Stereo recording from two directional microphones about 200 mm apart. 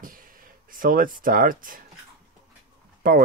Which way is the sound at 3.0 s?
45° right (ahead or behind).